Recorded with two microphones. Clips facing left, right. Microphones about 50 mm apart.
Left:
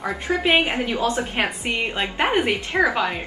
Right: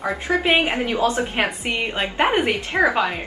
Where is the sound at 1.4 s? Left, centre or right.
Centre.